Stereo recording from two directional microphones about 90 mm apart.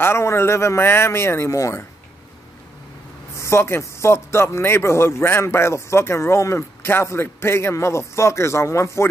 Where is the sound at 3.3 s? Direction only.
30° left (ahead or behind).